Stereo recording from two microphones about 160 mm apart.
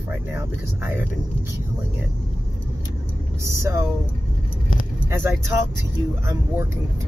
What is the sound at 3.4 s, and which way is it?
Speech, 15° right (ahead or behind).